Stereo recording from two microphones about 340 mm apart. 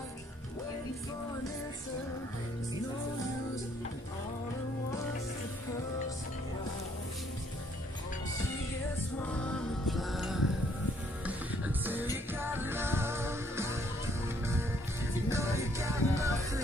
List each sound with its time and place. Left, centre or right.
9.5 s music: centre